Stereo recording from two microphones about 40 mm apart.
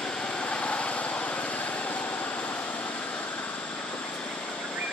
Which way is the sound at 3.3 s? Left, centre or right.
Left.